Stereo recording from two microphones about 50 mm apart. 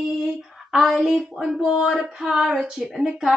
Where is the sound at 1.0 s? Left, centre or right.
Centre.